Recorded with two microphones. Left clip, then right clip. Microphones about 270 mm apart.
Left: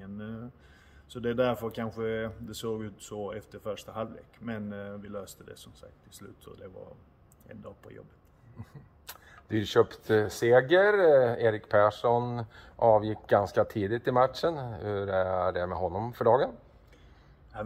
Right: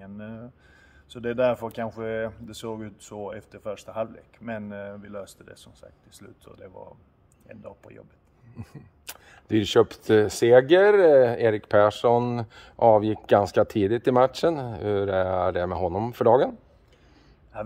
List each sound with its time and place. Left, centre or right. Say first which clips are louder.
0.0 s a sound: right 2 dB; centre
1.0 s speech: right 5 dB; centre
8.5 s speech: right 6 dB; right